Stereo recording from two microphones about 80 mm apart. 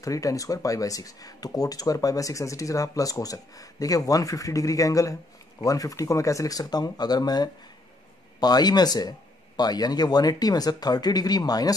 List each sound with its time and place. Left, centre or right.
0.0 s speech: left